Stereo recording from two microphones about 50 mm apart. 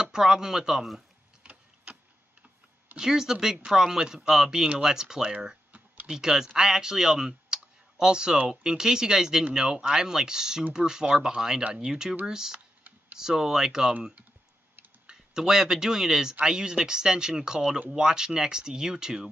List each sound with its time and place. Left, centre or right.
0.0 s speech: centre
1.4 s tick-tock: right
3.0 s speech: centre
15.0 s speech: centre